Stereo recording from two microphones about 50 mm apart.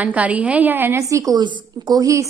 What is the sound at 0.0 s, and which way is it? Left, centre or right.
Speech, right.